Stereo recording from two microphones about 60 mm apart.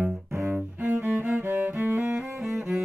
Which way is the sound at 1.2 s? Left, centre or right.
Right.